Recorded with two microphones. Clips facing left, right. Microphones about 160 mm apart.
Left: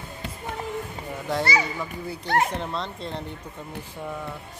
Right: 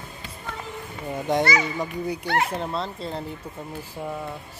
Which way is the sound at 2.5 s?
5° right (ahead or behind).